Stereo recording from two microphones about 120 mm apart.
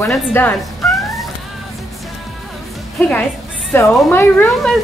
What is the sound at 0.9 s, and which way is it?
Cat, centre (ahead or behind).